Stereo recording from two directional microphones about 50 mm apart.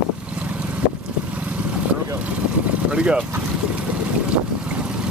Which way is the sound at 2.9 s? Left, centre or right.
Centre.